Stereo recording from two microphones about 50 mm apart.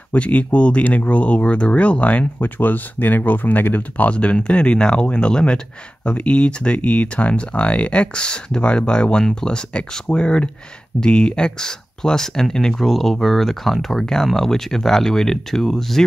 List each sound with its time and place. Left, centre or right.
0.1 s speech: left; by 16.0 s centre